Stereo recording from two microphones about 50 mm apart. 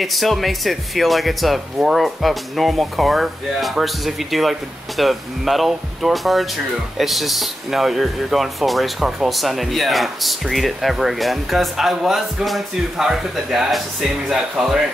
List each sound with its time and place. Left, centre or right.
0.0 s speech: centre